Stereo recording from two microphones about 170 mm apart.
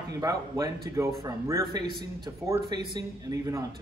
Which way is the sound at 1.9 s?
65° right (ahead or behind).